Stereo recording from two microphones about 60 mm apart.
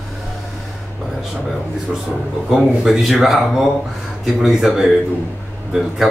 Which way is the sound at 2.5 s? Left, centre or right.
Centre.